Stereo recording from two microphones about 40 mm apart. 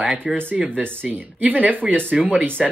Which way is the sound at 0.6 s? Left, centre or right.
Right.